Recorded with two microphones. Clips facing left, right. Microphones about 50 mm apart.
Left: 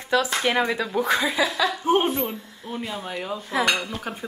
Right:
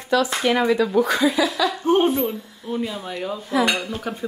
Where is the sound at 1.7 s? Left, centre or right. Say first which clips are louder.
Right 3 dB; centre.